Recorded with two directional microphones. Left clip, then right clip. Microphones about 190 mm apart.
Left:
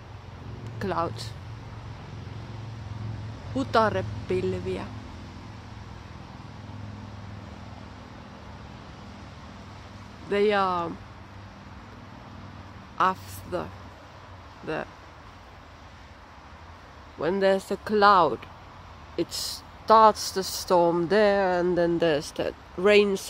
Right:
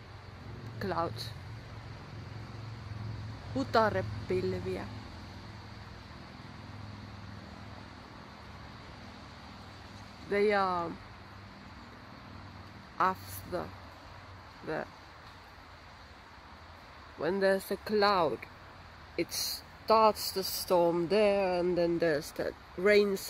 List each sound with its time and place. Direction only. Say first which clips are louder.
0.7 s speech: left 5 dB; centre (ahead or behind)
3.7 s speech: left 5 dB; centre (ahead or behind)
10.5 s speech: left 5 dB; centre (ahead or behind)
12.9 s a woman's voice: left 6 dB; centre (ahead or behind)
17.2 s speech: left 6 dB; centre (ahead or behind)
19.1 s speech: left 4 dB; 60° left (ahead or behind)
19.9 s speech: left 8 dB; 5° left (ahead or behind)